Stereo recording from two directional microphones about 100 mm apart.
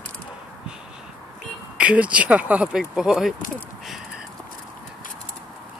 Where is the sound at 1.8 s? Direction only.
15° right (ahead or behind).